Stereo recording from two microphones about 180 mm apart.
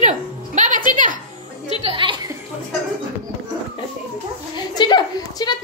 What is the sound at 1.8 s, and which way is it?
Speech, 30° right (ahead or behind).